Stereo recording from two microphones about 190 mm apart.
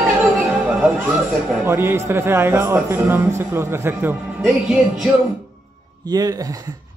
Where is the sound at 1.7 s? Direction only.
10° right (ahead or behind).